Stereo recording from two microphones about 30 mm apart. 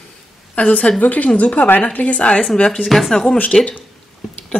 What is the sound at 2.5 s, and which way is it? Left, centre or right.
Speech, left.